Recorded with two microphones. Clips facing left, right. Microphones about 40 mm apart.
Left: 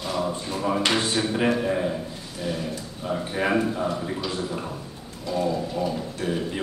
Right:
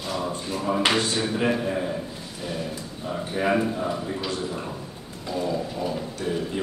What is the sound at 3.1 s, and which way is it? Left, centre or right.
Speech, centre.